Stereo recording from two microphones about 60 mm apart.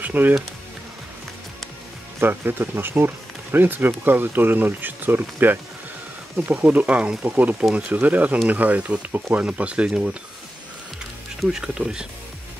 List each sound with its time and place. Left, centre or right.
0.0 s music: right
2.1 s speech: right
6.6 s speech: right
11.4 s speech: centre